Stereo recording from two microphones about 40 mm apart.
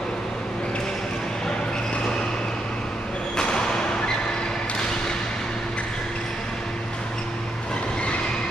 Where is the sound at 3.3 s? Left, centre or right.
Centre.